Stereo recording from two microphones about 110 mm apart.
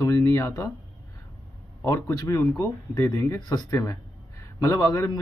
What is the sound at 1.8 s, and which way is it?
A man's voice, 25° left (ahead or behind).